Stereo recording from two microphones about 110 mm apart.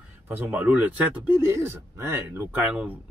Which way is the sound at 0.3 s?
15° right (ahead or behind).